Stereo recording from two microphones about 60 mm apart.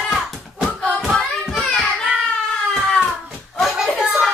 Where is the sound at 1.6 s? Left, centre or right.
Centre.